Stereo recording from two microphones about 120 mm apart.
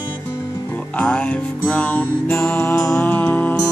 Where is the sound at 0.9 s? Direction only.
10° left (ahead or behind).